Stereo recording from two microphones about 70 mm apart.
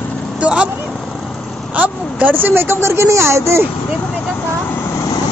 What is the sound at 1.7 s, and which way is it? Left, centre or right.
Speech, right.